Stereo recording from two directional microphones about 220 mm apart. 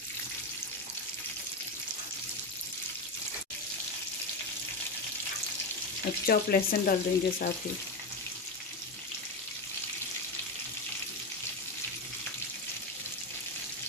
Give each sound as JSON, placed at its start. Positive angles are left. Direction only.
{"t": 6.2, "sound": "speech", "side_deg": 45}